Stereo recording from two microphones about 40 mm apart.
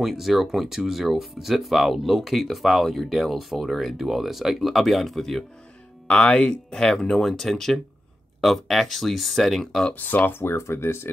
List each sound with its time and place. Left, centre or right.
0.0 s speech: centre
6.0 s speech: left
6.7 s speech: centre
9.9 s speech: left
10.4 s speech: left